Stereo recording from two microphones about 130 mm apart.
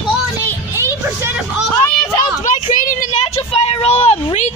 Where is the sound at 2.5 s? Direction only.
70° left (ahead or behind); by 3.9 s 45° left (ahead or behind).